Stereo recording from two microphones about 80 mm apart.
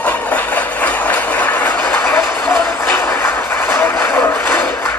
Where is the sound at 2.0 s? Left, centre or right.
Left.